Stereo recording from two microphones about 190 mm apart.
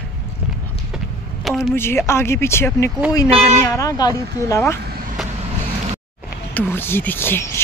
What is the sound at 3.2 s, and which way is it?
Speech, 35° right (ahead or behind).